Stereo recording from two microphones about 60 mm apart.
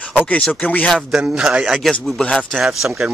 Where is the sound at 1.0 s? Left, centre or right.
Centre.